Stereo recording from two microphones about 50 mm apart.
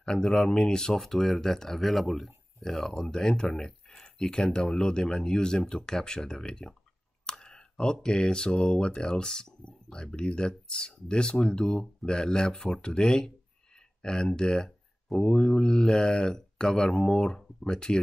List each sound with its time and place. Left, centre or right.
0.0 s speech: centre